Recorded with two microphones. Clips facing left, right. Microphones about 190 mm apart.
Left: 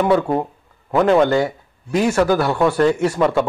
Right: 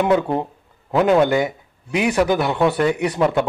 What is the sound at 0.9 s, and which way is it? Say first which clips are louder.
Speech: left 1 dB; 5° right (ahead or behind).